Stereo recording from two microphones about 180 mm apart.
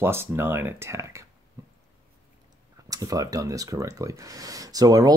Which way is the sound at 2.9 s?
20° right (ahead or behind).